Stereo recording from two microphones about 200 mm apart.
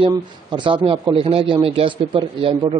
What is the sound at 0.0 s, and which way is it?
Speech, 25° right (ahead or behind).